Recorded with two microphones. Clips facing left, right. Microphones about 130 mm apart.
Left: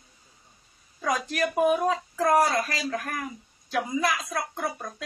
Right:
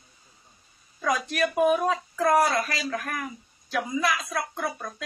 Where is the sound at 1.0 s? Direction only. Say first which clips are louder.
Right 1 dB; 35° left (ahead or behind).